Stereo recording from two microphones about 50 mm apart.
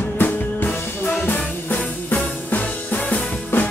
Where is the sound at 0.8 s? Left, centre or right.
Left.